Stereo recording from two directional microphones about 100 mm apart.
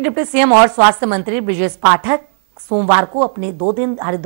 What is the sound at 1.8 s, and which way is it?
A woman's voice, 5° left (ahead or behind).